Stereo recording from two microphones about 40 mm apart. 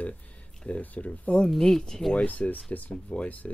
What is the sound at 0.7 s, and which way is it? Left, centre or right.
Speech, left.